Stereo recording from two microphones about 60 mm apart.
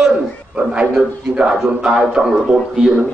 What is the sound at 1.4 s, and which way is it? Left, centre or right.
Speech, centre.